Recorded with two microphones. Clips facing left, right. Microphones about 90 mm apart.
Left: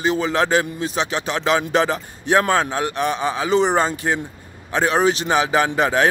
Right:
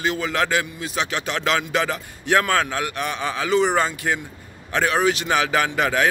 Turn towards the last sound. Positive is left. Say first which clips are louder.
# left 3 dB
turn(degrees=30)  # may be behind; listen again after turning